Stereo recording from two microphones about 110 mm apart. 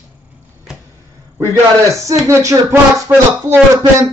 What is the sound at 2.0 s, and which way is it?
Music, 30° right (ahead or behind).